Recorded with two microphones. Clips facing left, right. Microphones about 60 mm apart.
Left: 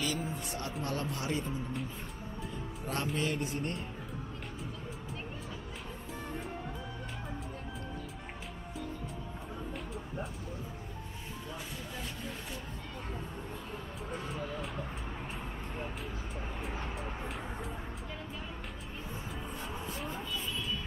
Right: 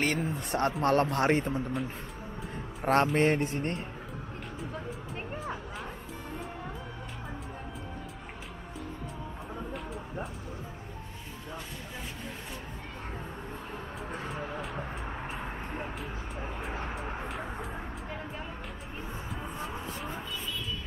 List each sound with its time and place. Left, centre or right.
0.0 s a man's voice: right
12.0 s a sound: centre
14.8 s vehicle: right
15.2 s vehicle: right